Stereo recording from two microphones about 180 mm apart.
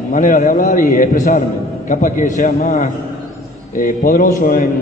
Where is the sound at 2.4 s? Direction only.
55° left (ahead or behind).